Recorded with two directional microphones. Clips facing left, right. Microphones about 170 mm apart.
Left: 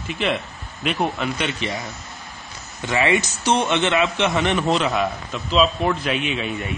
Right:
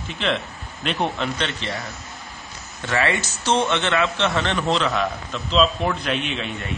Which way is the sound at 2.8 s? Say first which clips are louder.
Left 3 dB; 15° left (ahead or behind).